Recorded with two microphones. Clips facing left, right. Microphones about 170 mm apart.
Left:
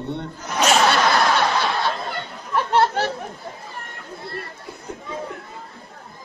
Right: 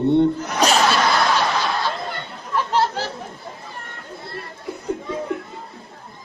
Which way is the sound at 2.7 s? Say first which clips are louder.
Left 3 dB; 60° left (ahead or behind).